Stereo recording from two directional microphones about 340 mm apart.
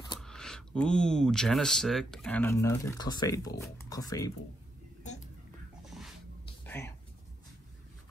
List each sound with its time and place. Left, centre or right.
0.2 s speech: centre
5.0 s whispering: left
6.4 s music: centre